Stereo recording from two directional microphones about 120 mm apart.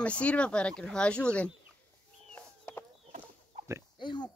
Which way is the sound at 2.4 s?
10° left (ahead or behind).